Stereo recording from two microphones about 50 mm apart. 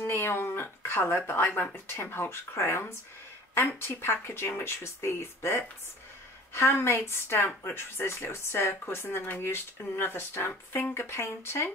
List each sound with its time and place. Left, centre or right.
0.0 s speech: left
2.0 s a woman's voice: left
11.1 s a woman's voice: left